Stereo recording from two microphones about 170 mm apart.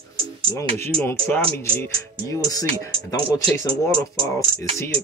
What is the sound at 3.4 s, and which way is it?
Speech, 30° right (ahead or behind).